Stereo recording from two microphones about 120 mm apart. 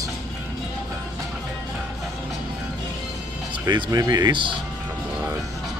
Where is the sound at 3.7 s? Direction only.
35° right (ahead or behind).